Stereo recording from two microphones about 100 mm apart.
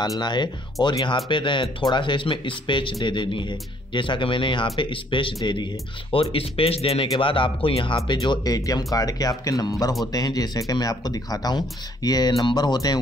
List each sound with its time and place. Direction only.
0.2 s speech: 50° left (ahead or behind)
6.1 s speech: 70° left (ahead or behind)
8.2 s speech: 40° left (ahead or behind)